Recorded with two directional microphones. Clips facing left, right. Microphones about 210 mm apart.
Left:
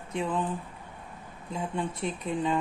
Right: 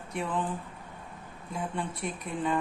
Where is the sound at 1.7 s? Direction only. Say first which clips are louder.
Left 3 dB; 20° left (ahead or behind).